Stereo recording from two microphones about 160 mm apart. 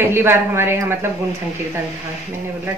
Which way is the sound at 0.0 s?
15° right (ahead or behind).